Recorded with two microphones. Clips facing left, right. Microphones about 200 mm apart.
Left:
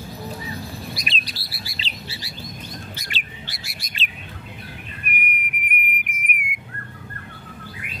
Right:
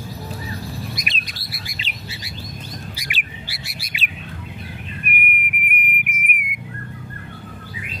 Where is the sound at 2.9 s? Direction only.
10° right (ahead or behind).